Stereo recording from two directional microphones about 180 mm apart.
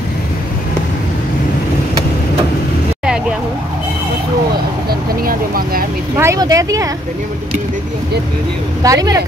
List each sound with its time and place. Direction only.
5.2 s speech: 55° right (ahead or behind)
6.1 s speech: 15° right (ahead or behind)
8.8 s speech: 20° right (ahead or behind)